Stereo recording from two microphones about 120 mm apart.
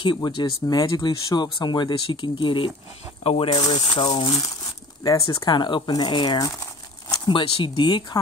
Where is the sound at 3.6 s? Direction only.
40° left (ahead or behind).